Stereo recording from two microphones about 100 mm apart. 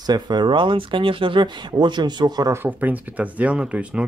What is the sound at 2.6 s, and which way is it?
Speech, 15° right (ahead or behind).